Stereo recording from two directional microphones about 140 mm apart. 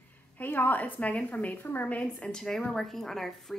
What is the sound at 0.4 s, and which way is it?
A woman's voice, 15° left (ahead or behind).